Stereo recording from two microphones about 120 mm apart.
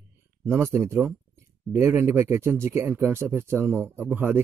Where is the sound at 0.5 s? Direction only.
20° right (ahead or behind).